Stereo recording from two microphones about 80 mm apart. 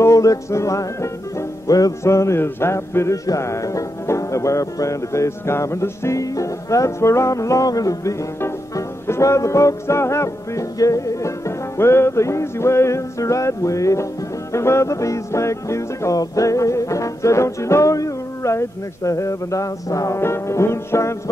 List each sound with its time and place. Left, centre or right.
0.0 s music: left
20.2 s music: left